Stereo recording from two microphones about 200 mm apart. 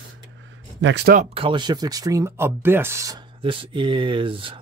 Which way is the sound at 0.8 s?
60° right (ahead or behind).